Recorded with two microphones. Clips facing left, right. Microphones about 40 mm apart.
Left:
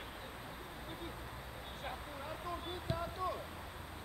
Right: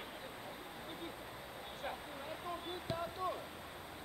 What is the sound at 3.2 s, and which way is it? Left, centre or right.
Vehicle, right.